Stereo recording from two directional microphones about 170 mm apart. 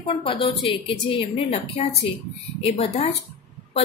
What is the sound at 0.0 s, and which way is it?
A woman's voice, 30° left (ahead or behind).